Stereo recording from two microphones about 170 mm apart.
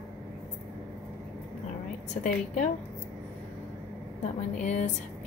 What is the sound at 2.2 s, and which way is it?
Speech, 45° left (ahead or behind).